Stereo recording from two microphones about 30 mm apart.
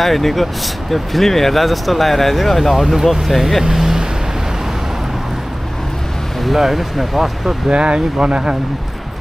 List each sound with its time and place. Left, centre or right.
0.0 s speech: centre
2.7 s speech: centre
3.7 s vehicle: centre
6.4 s speech: centre
7.7 s speech: right